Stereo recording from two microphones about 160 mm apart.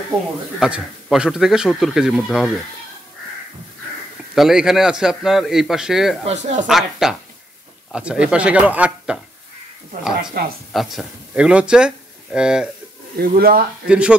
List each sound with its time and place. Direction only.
0.6 s speech: 5° right (ahead or behind)
4.4 s speech: centre (ahead or behind)
6.2 s speech: 45° right (ahead or behind)
6.7 s speech: 5° right (ahead or behind)
10.4 s speech: 70° right (ahead or behind)
10.7 s speech: centre (ahead or behind)
13.2 s speech: 65° right (ahead or behind)
13.8 s speech: 5° right (ahead or behind)